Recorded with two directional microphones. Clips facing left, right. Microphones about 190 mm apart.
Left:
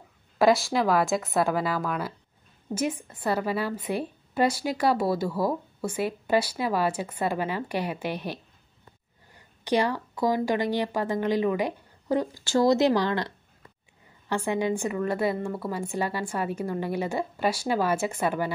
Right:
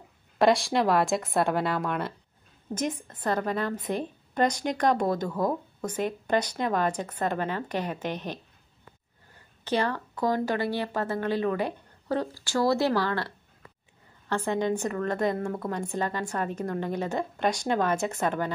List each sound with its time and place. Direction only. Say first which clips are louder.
0.4 s a woman's voice: left 1 dB; centre (ahead or behind); by 13.3 s 20° left (ahead or behind)
14.3 s a woman's voice: left 1 dB; 10° left (ahead or behind)